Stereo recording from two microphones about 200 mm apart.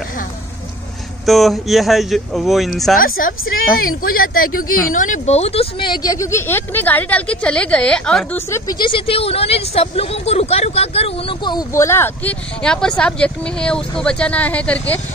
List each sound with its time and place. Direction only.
1.2 s speech: centre (ahead or behind)
3.0 s speech: 45° left (ahead or behind); by 15.0 s 5° left (ahead or behind)